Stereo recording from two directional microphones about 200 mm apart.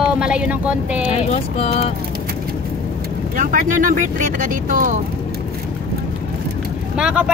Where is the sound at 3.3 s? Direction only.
40° right (ahead or behind).